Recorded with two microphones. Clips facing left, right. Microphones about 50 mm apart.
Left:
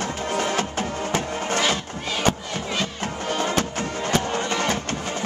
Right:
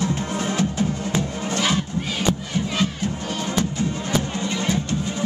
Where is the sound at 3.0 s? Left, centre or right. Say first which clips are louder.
Left 1 dB; left.